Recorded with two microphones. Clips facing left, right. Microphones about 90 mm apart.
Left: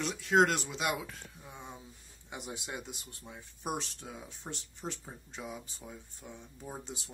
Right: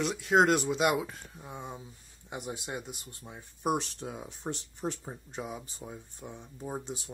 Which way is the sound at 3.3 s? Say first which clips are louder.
Right 7 dB; 25° right (ahead or behind).